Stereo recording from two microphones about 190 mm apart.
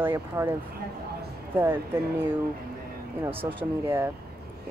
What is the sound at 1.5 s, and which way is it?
Speech, 10° right (ahead or behind).